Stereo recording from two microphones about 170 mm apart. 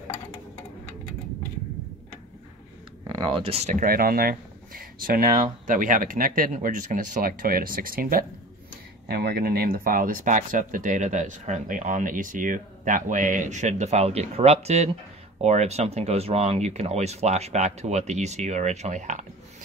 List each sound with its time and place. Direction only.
3.1 s speech: 30° right (ahead or behind)
3.8 s speech: 60° right (ahead or behind)
9.0 s speech: 70° right (ahead or behind); by 19.2 s 45° right (ahead or behind)